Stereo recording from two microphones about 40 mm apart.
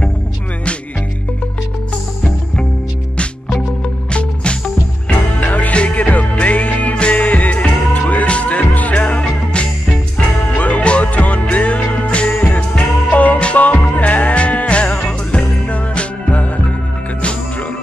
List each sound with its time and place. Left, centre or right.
4.1 s music: left
5.4 s music: left
9.2 s music: left
10.5 s music: left